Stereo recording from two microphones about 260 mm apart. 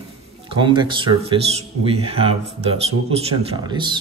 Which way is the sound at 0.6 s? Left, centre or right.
Centre.